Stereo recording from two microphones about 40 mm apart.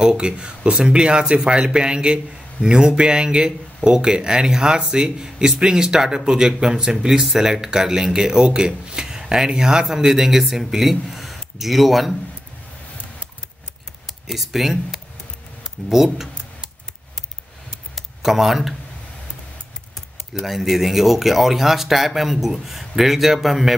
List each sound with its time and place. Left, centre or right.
0.0 s speech: right; by 12.2 s centre
14.0 s speech: centre
17.9 s a sound: centre
20.4 s speech: centre